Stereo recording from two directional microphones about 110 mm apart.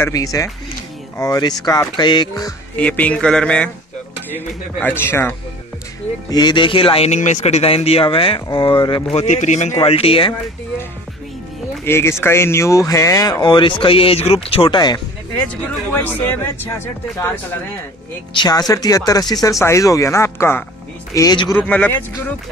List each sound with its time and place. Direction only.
0.1 s speech: 30° left (ahead or behind)
2.7 s speech: 10° left (ahead or behind)
4.7 s speech: 20° left (ahead or behind)
6.3 s speech: 45° left (ahead or behind)
9.1 s speech: 80° left
9.8 s speech: 60° left (ahead or behind)
11.8 s speech: 20° left (ahead or behind); by 14.7 s 60° left (ahead or behind)
14.7 s speech: 40° left (ahead or behind)
15.4 s speech: 15° left (ahead or behind)
18.3 s speech: 40° left (ahead or behind)
21.5 s speech: 15° left (ahead or behind)